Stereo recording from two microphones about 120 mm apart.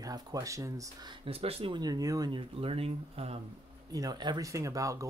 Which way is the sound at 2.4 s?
50° right (ahead or behind).